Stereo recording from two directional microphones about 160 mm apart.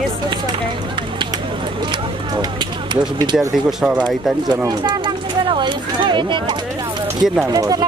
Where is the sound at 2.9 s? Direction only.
25° right (ahead or behind).